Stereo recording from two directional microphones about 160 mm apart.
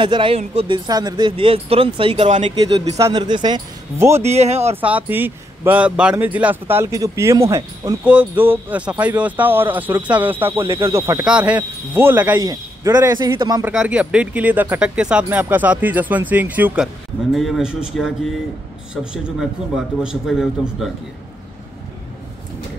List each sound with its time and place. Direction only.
0.0 s speech: 30° right (ahead or behind)
2.2 s speech: 45° right (ahead or behind)
2.8 s a man's voice: 20° right (ahead or behind)
4.2 s speech: 40° right (ahead or behind)
4.7 s speech: 10° right (ahead or behind)
12.4 s a man's voice: 25° right (ahead or behind)
13.7 s speech: 10° right (ahead or behind)
20.0 s a man's voice: 5° right (ahead or behind)